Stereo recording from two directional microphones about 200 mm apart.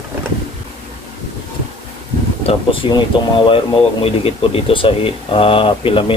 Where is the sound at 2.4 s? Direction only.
25° left (ahead or behind).